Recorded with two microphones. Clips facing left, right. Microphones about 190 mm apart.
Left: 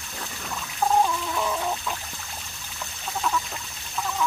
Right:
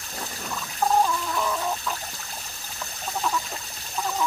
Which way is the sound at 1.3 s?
5° left (ahead or behind).